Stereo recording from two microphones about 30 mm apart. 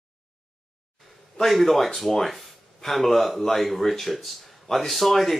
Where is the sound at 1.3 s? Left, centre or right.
Centre.